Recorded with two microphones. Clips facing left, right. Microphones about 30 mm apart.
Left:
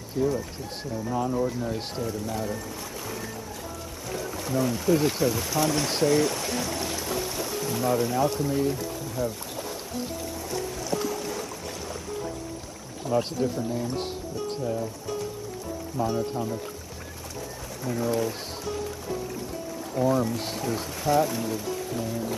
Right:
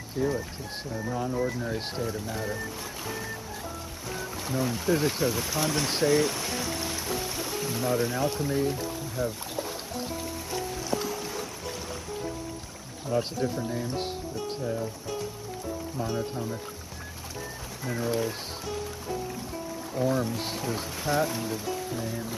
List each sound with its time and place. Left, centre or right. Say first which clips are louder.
0.2 s speech: left 3 dB; centre
1.1 s speech: left 4 dB; centre
1.6 s speech: left 1 dB; centre
4.1 s speech: left 3 dB; centre
10.5 s music: left 1 dB; centre
13.1 s speech: left 2 dB; centre
17.8 s speech: left 2 dB; centre
20.0 s speech: left 3 dB; centre